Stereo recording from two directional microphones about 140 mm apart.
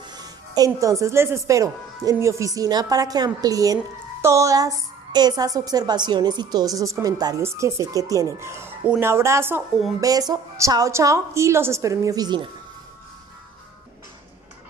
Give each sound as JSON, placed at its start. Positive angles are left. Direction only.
{"t": 0.0, "sound": "a woman's voice", "side_deg": -30}